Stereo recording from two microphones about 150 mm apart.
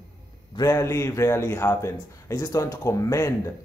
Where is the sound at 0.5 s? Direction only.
25° left (ahead or behind).